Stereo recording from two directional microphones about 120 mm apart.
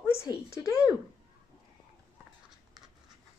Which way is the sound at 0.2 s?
25° left (ahead or behind).